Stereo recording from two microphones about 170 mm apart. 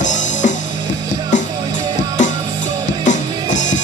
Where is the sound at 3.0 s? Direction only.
45° left (ahead or behind).